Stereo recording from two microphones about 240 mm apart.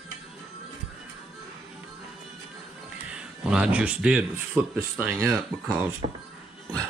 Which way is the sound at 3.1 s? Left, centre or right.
Centre.